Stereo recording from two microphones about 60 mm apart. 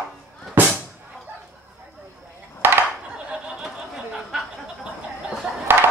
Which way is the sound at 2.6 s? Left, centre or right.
Right.